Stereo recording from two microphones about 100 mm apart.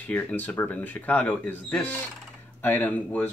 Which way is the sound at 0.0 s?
15° left (ahead or behind).